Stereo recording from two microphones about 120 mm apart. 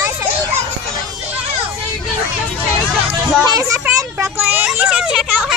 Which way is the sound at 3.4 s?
30° right (ahead or behind).